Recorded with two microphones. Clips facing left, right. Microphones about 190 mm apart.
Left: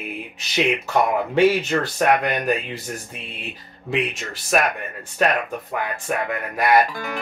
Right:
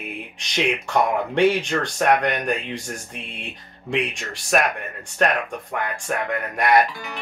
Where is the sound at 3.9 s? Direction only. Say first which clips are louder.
Left 1 dB; centre (ahead or behind).